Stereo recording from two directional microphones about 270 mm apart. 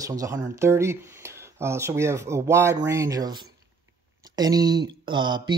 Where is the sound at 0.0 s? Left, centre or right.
Centre.